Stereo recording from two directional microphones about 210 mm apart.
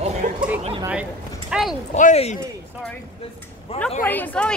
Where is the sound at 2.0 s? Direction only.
35° left (ahead or behind).